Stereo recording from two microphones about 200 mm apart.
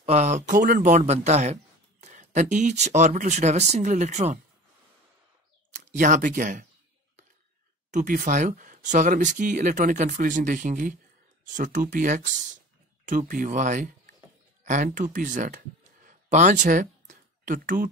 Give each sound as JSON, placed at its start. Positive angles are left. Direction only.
{"t": 0.0, "sound": "speech", "side_deg": -35}
{"t": 5.7, "sound": "speech", "side_deg": -35}
{"t": 7.9, "sound": "speech", "side_deg": -40}